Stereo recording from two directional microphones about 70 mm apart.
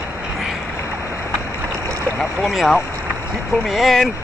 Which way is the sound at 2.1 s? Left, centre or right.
Centre.